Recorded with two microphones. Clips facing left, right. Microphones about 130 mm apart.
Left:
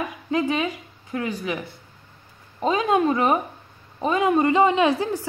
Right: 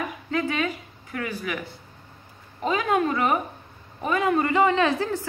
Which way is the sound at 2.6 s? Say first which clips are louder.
Left 3 dB; 20° left (ahead or behind).